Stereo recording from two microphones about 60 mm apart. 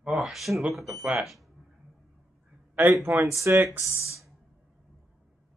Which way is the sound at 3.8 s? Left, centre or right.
Left.